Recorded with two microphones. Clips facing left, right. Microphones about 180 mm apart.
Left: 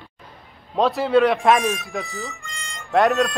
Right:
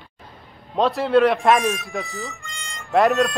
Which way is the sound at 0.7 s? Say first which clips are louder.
Even; centre (ahead or behind).